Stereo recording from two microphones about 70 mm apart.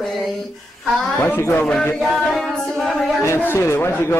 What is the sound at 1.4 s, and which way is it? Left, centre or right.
Speech, left.